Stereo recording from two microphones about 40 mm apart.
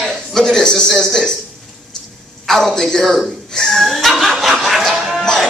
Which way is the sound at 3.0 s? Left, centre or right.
Centre.